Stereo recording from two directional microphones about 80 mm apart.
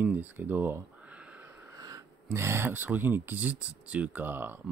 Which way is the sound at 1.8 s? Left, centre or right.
Right.